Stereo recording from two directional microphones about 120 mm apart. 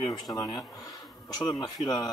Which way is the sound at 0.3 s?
30° left (ahead or behind).